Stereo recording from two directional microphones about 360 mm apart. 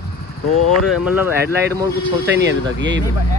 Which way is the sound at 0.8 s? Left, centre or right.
Centre.